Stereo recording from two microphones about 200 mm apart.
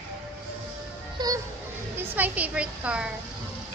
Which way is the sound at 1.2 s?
20° right (ahead or behind).